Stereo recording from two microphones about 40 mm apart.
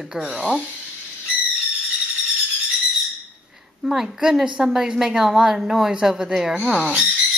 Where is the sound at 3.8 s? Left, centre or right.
Centre.